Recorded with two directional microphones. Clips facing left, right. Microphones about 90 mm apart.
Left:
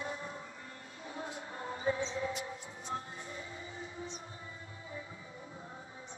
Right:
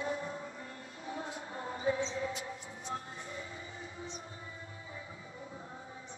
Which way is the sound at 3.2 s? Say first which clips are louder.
Right 1 dB; 30° right (ahead or behind).